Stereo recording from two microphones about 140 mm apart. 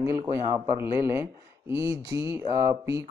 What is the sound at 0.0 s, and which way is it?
Speech, 20° right (ahead or behind).